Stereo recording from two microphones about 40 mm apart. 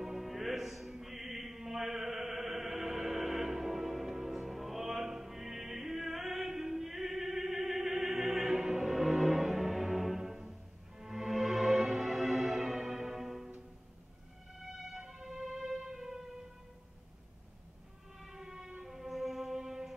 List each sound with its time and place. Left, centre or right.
0.0 s music: centre
0.9 s chant: centre
8.4 s music: centre
14.6 s music: centre
18.2 s train: centre
18.8 s music: centre